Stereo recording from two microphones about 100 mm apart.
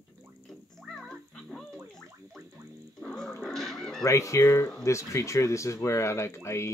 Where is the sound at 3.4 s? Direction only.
5° left (ahead or behind).